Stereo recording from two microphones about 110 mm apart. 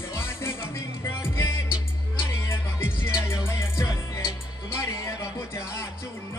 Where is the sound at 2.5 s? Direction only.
20° left (ahead or behind).